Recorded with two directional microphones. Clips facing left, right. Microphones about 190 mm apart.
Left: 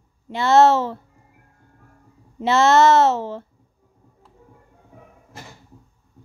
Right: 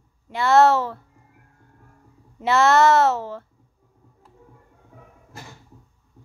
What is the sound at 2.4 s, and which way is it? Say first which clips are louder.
A woman's voice: left 2 dB; 25° left (ahead or behind).